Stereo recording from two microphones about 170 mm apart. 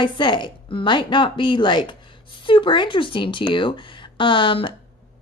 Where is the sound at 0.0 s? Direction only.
30° left (ahead or behind).